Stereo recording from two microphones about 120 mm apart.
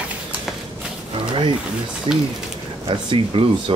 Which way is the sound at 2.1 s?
50° right (ahead or behind).